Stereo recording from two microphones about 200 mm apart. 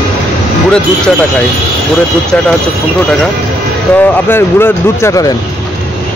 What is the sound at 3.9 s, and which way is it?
Speech, 10° left (ahead or behind).